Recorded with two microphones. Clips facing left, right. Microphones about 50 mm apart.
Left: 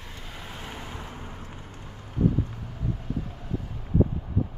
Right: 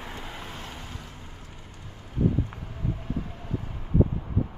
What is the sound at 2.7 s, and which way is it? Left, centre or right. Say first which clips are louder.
Vehicle: even; centre.